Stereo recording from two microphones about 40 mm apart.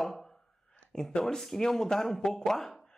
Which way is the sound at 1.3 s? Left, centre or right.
Centre.